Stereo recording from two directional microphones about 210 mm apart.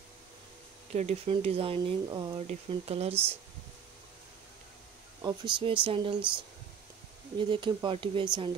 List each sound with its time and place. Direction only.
0.9 s speech: 30° right (ahead or behind)
5.2 s speech: 25° right (ahead or behind)
7.3 s speech: 25° right (ahead or behind)